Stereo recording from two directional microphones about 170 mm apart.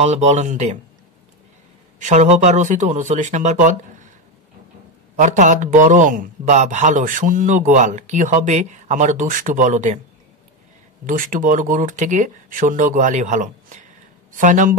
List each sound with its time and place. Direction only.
0.0 s a man's voice: 40° right (ahead or behind)
2.0 s a man's voice: 45° right (ahead or behind)
5.1 s a man's voice: 45° right (ahead or behind)
11.1 s a man's voice: 55° right (ahead or behind)